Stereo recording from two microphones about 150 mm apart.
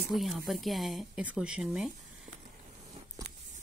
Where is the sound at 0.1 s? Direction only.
Centre (ahead or behind).